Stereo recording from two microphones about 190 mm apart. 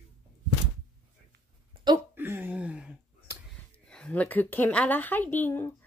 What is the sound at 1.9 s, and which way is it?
Speech, 20° right (ahead or behind).